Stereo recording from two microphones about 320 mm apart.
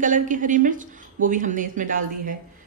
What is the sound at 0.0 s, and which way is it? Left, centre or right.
Speech, right.